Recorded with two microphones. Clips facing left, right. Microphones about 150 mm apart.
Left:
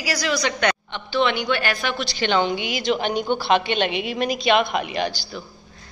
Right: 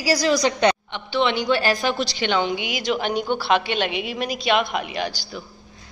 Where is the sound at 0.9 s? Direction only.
20° right (ahead or behind).